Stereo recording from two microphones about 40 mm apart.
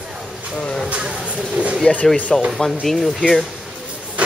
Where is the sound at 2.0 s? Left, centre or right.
Centre.